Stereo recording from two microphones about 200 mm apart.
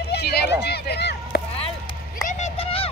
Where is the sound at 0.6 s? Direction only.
55° left (ahead or behind).